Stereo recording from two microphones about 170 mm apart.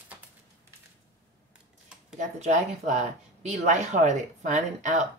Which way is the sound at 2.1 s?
45° right (ahead or behind).